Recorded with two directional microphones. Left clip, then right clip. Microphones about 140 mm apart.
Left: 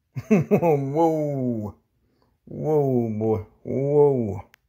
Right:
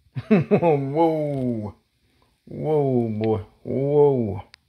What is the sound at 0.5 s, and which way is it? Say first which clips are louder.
Speech: right 1 dB; 25° left (ahead or behind).